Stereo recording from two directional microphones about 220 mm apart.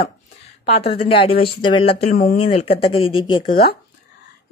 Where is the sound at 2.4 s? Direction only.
25° left (ahead or behind).